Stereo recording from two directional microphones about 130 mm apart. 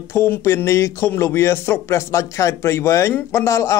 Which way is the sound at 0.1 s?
20° left (ahead or behind).